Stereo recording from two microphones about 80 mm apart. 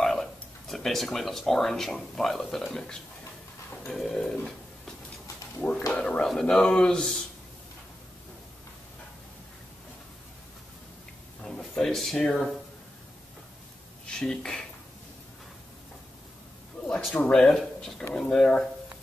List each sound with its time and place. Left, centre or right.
0.0 s speech: centre
5.6 s speech: centre
11.4 s a sound: centre
12.2 s speech: centre
14.0 s speech: centre
17.3 s speech: centre